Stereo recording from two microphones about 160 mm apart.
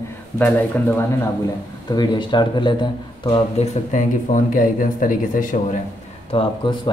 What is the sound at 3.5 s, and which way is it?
Speech, 50° left (ahead or behind).